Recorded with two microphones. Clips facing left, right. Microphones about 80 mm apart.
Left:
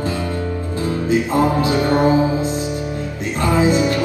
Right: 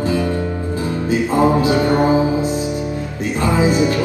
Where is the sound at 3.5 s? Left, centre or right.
Centre.